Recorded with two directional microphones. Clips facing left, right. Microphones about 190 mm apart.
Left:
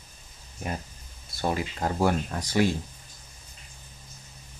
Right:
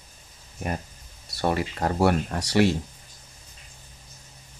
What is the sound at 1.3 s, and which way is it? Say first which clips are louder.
Speech: right 3 dB; 70° right (ahead or behind).